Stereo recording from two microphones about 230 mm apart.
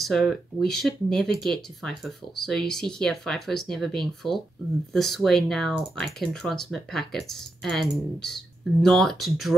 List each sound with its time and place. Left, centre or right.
0.0 s speech: centre